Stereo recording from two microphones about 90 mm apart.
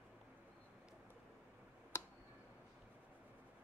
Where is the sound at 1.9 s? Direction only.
30° left (ahead or behind).